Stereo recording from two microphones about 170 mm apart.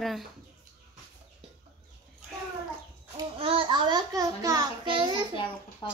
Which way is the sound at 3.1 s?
30° right (ahead or behind).